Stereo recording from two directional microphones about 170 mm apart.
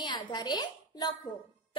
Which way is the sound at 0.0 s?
25° left (ahead or behind).